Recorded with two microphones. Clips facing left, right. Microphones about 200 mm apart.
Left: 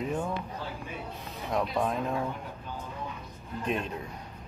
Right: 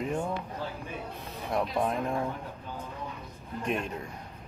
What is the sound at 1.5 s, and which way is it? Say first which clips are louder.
Speech: even; 10° right (ahead or behind).